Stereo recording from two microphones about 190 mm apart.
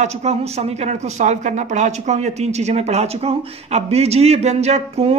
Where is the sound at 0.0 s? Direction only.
35° right (ahead or behind).